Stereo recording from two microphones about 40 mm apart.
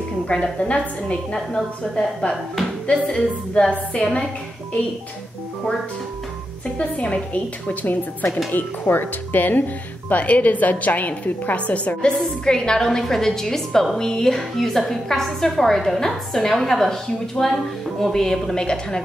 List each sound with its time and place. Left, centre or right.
0.3 s a woman's voice: left
1.3 s a woman's voice: centre
6.8 s a woman's voice: left
7.8 s speech: left
10.2 s a woman's voice: left
12.4 s a woman's voice: centre